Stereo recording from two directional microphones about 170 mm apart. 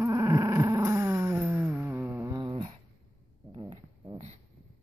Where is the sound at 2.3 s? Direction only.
25° right (ahead or behind).